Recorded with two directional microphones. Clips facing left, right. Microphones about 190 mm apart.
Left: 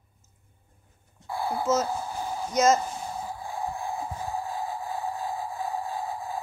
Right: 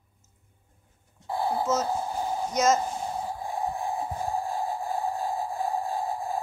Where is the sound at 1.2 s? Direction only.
20° right (ahead or behind).